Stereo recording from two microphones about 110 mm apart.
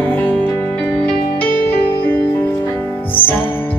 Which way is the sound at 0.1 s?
20° left (ahead or behind).